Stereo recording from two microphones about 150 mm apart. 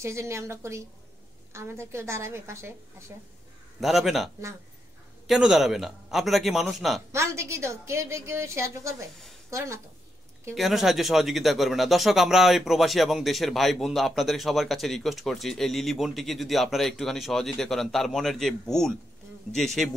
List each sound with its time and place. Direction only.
0.0 s a woman's voice: 20° right (ahead or behind)
3.8 s speech: centre (ahead or behind)
7.1 s a woman's voice: 20° right (ahead or behind)
10.5 s speech: centre (ahead or behind)